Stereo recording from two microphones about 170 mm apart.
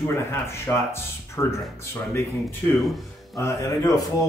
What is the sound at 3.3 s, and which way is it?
Speech, 20° left (ahead or behind).